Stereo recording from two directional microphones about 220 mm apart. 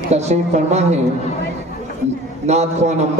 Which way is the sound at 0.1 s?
30° right (ahead or behind).